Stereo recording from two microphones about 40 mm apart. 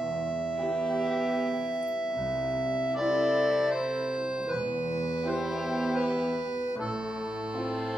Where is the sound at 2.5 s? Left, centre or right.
Right.